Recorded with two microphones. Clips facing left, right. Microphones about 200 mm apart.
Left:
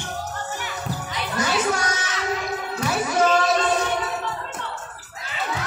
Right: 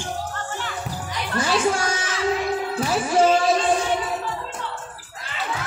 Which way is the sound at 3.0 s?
30° right (ahead or behind).